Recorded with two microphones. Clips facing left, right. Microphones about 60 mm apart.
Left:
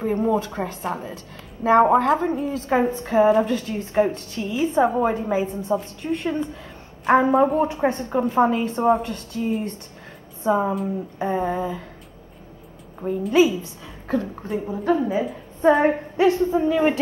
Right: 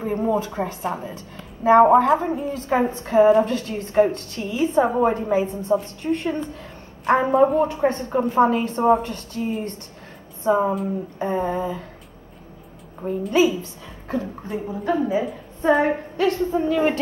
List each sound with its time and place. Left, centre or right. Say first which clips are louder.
0.0 s a woman's voice: left 1 dB; centre
13.0 s a woman's voice: left 1 dB; centre
16.2 s speech: left 4 dB; centre
16.5 s a woman's voice: left 1 dB; centre